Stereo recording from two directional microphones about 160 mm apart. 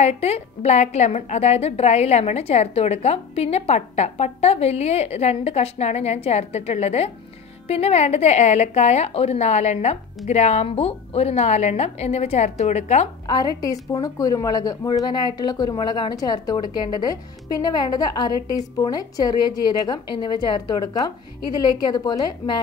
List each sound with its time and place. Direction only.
0.2 s a woman's voice: 40° left (ahead or behind)
13.3 s a woman's voice: 25° left (ahead or behind)